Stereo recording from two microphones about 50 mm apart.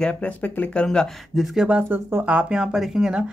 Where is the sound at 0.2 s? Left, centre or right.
Left.